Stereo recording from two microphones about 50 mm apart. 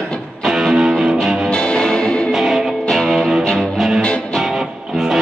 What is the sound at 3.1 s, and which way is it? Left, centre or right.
Music, centre.